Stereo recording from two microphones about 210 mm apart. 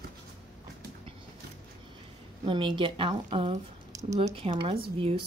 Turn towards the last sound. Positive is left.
turn(degrees=-25)  # may be behind; listen again after turning